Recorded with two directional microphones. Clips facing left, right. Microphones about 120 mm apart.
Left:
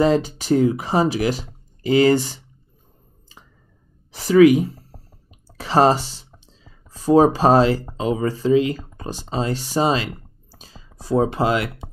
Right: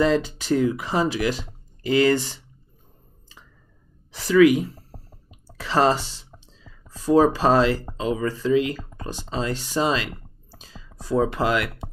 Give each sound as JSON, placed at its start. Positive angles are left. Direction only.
{"t": 0.1, "sound": "speech", "side_deg": 35}
{"t": 4.1, "sound": "speech", "side_deg": 40}
{"t": 5.6, "sound": "speech", "side_deg": 40}
{"t": 7.0, "sound": "a sound", "side_deg": 40}
{"t": 7.3, "sound": "speech", "side_deg": 35}
{"t": 10.6, "sound": "a sound", "side_deg": 35}